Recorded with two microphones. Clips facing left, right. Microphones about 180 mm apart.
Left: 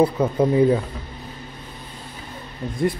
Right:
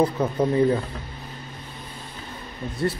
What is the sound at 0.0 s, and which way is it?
Speech, 10° left (ahead or behind).